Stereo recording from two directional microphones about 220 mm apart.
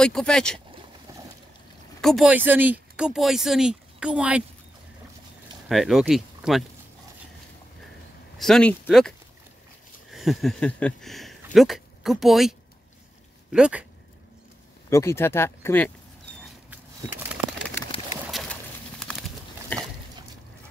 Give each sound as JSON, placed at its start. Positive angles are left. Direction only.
{"t": 0.0, "sound": "speech", "side_deg": 5}
{"t": 2.0, "sound": "speech", "side_deg": 0}
{"t": 5.7, "sound": "speech", "side_deg": 0}
{"t": 8.4, "sound": "speech", "side_deg": 5}
{"t": 10.1, "sound": "a sound", "side_deg": 0}
{"t": 11.5, "sound": "speech", "side_deg": 0}
{"t": 14.9, "sound": "speech", "side_deg": 15}
{"t": 16.7, "sound": "a sound", "side_deg": -5}
{"t": 18.2, "sound": "pigeon", "side_deg": 0}
{"t": 19.7, "sound": "a sound", "side_deg": 10}